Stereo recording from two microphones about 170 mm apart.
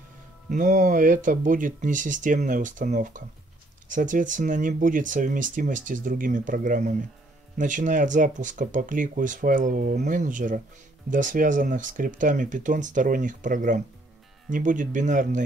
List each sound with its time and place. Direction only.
0.5 s speech: 45° right (ahead or behind)